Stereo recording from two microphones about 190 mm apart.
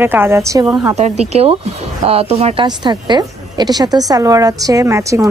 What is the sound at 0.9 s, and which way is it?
A woman's voice, 35° right (ahead or behind).